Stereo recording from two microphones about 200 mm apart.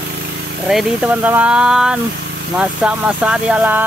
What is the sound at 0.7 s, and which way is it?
Speech, centre (ahead or behind).